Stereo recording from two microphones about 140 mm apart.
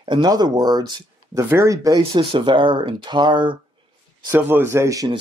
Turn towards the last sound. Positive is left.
turn(degrees=-25)  # may be behind; listen again after turning